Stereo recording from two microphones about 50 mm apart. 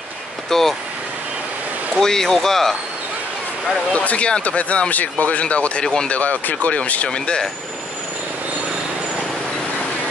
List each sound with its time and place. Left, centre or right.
0.5 s speech: centre
2.0 s speech: centre
3.9 s speech: left
7.1 s speech: centre